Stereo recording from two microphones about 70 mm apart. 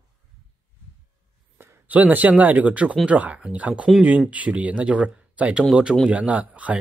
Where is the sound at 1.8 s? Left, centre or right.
Right.